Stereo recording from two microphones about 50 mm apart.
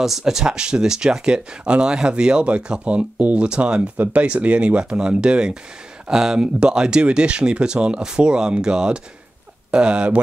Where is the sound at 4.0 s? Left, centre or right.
Right.